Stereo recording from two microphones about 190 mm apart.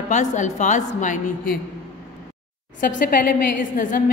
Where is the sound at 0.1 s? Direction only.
40° left (ahead or behind).